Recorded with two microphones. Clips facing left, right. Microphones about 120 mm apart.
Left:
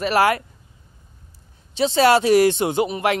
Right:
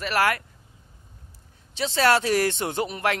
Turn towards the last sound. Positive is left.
turn(degrees=15)  # may be behind; listen again after turning